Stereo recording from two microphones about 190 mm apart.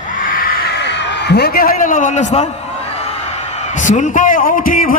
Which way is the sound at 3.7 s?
40° left (ahead or behind).